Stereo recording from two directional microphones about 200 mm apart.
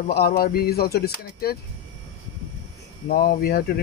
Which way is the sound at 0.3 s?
50° left (ahead or behind).